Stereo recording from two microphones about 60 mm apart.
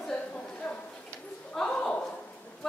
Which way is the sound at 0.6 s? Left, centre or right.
Centre.